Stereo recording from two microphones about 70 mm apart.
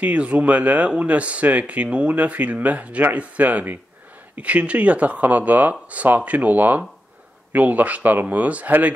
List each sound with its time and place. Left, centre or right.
0.0 s speech: centre